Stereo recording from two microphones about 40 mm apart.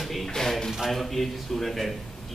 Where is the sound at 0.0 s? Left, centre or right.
Centre.